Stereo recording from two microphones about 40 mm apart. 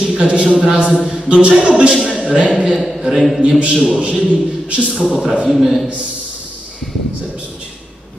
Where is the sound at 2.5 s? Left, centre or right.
Centre.